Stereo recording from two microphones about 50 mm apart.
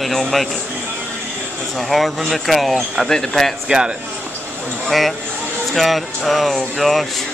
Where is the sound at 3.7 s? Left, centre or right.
Right.